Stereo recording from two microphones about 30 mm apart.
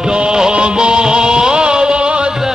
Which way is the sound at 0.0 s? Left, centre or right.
Right.